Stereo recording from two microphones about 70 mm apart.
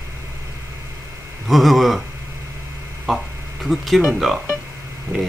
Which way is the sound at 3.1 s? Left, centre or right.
Centre.